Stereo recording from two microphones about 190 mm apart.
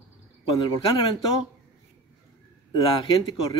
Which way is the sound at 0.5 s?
25° left (ahead or behind).